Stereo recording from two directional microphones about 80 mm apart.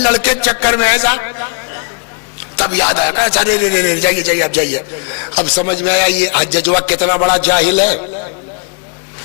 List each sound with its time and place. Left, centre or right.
0.0 s a man's voice: centre